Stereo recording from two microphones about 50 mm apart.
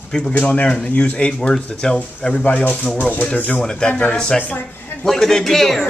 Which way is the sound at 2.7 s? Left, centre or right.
Centre.